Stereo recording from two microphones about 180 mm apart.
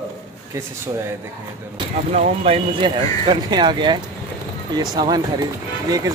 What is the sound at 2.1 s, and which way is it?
Speech, 35° right (ahead or behind).